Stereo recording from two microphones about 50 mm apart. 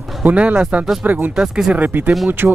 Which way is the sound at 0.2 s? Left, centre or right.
Right.